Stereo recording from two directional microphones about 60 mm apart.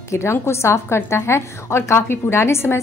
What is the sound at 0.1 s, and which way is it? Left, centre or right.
A woman's voice, left.